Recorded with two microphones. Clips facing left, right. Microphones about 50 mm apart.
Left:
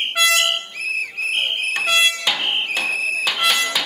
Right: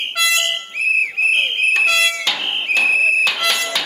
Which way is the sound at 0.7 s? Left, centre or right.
Right.